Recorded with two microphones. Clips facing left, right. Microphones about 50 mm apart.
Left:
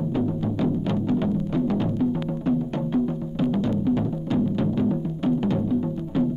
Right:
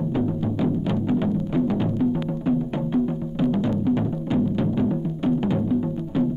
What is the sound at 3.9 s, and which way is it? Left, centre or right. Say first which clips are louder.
Music: right 1 dB; right.